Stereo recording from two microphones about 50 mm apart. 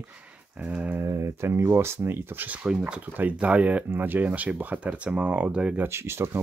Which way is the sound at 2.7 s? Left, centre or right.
Centre.